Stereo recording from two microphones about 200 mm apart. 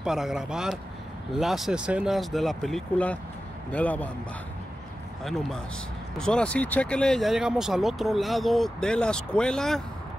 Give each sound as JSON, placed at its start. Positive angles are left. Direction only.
{"t": 0.0, "sound": "a man's voice", "side_deg": 0}
{"t": 5.2, "sound": "speech", "side_deg": 0}